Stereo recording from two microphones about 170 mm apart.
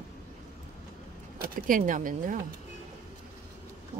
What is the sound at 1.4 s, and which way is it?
Speech, 55° right (ahead or behind).